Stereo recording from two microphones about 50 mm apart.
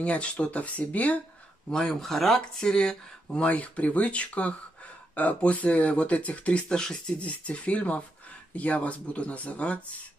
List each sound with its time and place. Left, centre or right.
0.0 s speech: left
1.7 s speech: centre; by 6.6 s left
6.7 s speech: centre
7.2 s speech: left